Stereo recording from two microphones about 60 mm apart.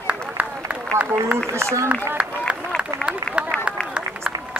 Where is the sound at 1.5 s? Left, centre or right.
Right.